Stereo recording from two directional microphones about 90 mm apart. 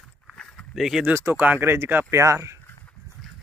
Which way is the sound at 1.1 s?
25° right (ahead or behind).